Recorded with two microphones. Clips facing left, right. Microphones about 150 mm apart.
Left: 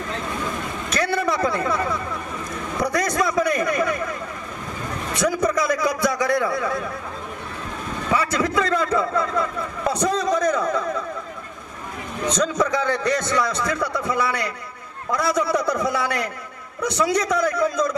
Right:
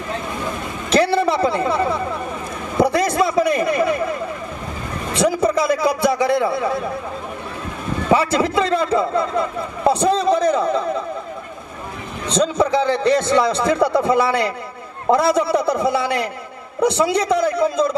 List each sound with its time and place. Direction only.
0.8 s a sound: 25° right (ahead or behind)
5.1 s a man's voice: 30° right (ahead or behind)
8.1 s a man's voice: 25° right (ahead or behind)
12.3 s a man's voice: 30° right (ahead or behind)